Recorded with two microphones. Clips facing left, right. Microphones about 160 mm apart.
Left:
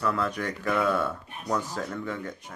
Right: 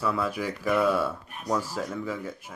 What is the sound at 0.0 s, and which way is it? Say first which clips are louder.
Speech: even; 5° right (ahead or behind).